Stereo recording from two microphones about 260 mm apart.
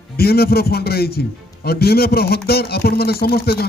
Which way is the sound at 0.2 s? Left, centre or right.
Left.